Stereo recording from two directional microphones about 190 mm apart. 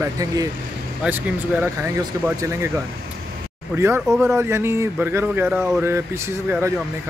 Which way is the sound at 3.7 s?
15° right (ahead or behind).